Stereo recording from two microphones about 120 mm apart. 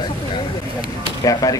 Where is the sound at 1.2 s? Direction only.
30° left (ahead or behind).